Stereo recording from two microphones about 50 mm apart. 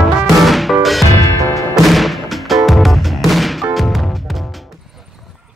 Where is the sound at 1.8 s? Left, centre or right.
Centre.